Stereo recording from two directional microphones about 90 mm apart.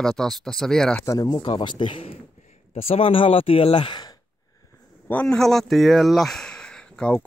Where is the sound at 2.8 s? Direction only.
90° left; by 4.1 s 55° left (ahead or behind).